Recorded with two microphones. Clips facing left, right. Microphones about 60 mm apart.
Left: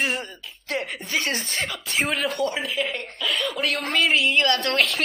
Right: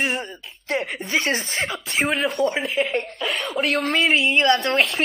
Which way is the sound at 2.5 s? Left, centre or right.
Right.